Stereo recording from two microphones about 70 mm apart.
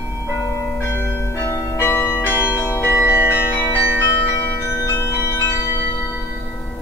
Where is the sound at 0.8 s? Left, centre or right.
Left.